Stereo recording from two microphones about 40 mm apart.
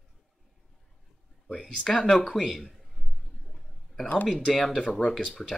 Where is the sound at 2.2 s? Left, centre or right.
Centre.